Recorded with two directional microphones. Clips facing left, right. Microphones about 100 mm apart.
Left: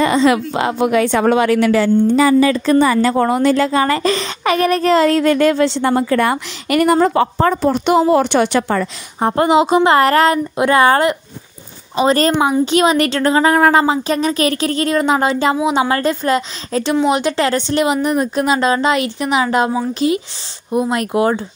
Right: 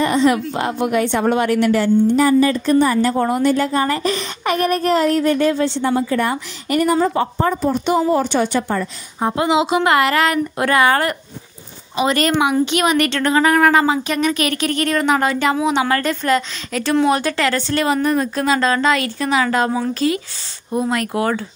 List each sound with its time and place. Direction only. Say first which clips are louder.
0.0 s speech: left 2 dB; 90° left
9.3 s a woman's voice: left 4 dB; 50° left (ahead or behind)
9.8 s a woman's voice: left 4 dB; 35° left (ahead or behind)
16.9 s a woman's voice: even; 20° left (ahead or behind)